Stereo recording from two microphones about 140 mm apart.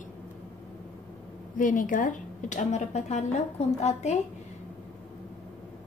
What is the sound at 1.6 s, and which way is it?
Speech, 70° left (ahead or behind).